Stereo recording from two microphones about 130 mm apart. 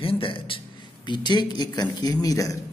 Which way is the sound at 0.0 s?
45° left (ahead or behind).